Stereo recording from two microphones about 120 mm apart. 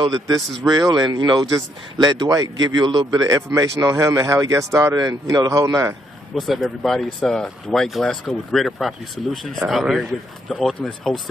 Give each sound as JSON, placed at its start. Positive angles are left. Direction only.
{"t": 0.7, "sound": "speech", "side_deg": -35}
{"t": 6.3, "sound": "speech", "side_deg": 0}